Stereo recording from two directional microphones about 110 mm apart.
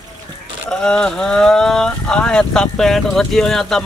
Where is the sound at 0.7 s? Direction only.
5° left (ahead or behind).